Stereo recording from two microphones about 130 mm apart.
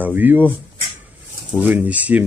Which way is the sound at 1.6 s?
10° right (ahead or behind).